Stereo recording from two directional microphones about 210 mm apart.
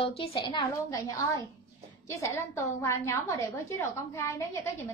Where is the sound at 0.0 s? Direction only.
25° left (ahead or behind).